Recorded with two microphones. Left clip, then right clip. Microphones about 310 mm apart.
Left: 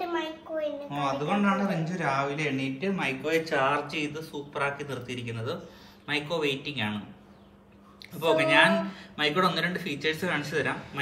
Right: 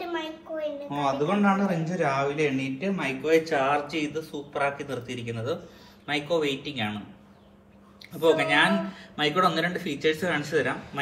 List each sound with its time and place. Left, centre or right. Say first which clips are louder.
0.0 s a woman's voice: left 1 dB; centre
8.2 s a woman's voice: even; centre